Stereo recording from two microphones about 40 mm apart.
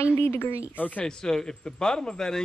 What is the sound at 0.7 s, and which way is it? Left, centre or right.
Speech, left.